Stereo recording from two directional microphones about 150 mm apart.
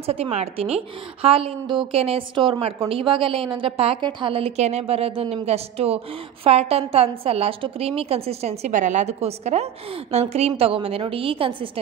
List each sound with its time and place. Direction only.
0.0 s a woman's voice: 40° right (ahead or behind)